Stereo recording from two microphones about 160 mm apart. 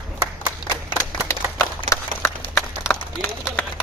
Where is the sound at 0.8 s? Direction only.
20° left (ahead or behind).